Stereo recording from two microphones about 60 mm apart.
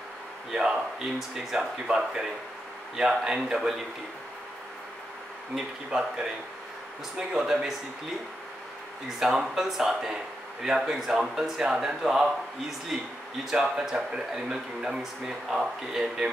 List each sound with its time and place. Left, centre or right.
0.5 s speech: centre
5.9 s speech: centre
9.4 s speech: centre